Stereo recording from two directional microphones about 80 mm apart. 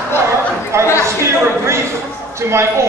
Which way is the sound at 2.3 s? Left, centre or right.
Right.